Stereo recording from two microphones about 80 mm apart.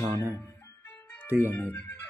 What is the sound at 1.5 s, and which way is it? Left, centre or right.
Speech, left.